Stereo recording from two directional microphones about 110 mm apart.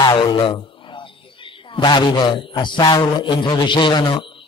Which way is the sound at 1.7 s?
45° left (ahead or behind).